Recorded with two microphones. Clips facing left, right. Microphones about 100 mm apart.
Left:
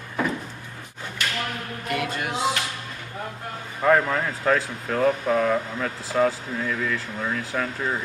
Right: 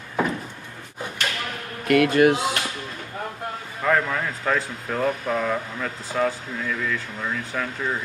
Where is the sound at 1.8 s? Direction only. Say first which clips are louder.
Right 12 dB; 75° right (ahead or behind).